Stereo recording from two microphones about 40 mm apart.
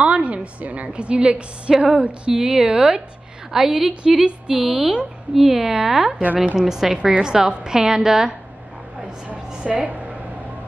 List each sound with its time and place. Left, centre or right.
0.0 s a woman's voice: right; by 5.6 s centre
5.6 s a woman's voice: right
5.9 s a woman's voice: centre
6.3 s a woman's voice: right
6.7 s a woman's voice: centre
9.7 s a woman's voice: right